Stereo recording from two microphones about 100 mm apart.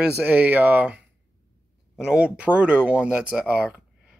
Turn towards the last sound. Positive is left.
turn(degrees=-15)  # may be behind; listen again after turning